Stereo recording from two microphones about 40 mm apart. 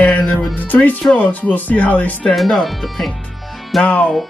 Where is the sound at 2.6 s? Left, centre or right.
Centre.